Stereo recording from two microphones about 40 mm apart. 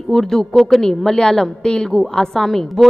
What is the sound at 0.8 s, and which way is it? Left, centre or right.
A woman's voice, centre.